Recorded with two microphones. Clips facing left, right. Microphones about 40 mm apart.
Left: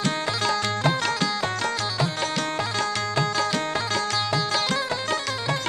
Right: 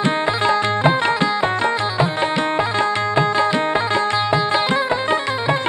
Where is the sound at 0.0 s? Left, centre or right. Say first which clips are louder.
Right 7 dB; right.